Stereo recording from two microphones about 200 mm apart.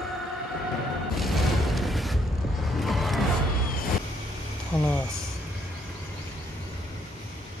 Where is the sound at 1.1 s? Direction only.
Centre (ahead or behind).